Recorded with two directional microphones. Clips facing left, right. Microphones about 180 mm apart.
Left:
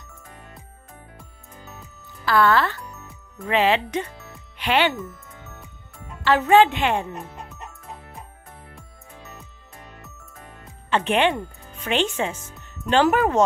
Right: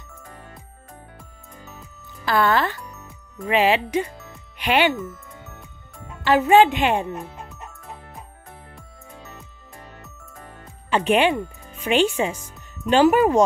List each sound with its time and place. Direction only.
2.2 s speech: 20° right (ahead or behind)
2.8 s music: centre (ahead or behind)
3.4 s speech: 10° right (ahead or behind)
6.2 s speech: 15° right (ahead or behind)
7.4 s music: centre (ahead or behind)
10.9 s speech: 10° right (ahead or behind)